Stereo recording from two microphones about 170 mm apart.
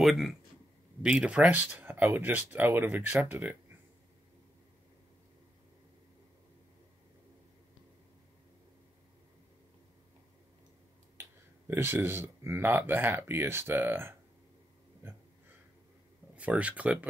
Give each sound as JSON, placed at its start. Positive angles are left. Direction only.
{"t": 0.0, "sound": "speech", "side_deg": 0}
{"t": 11.1, "sound": "speech", "side_deg": -15}
{"t": 15.0, "sound": "a sound", "side_deg": -15}
{"t": 16.3, "sound": "speech", "side_deg": -10}